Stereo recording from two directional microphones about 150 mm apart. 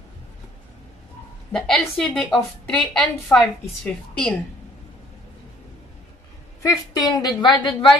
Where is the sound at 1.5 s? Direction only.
5° left (ahead or behind).